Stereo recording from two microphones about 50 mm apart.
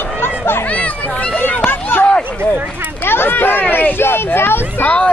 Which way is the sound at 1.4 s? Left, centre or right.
Left.